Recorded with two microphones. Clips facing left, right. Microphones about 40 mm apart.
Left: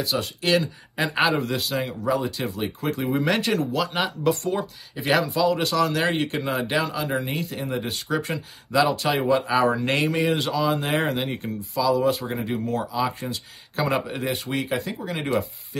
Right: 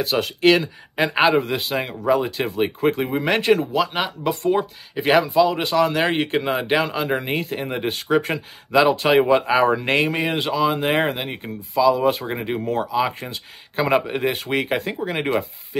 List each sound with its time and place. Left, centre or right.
0.0 s speech: right
0.9 s speech: right
11.9 s speech: right